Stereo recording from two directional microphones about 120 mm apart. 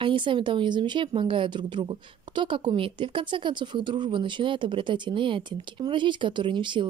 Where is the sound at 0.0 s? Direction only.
45° right (ahead or behind).